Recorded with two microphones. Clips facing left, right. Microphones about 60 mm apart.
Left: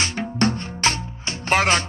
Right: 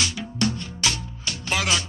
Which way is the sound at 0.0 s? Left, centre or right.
Left.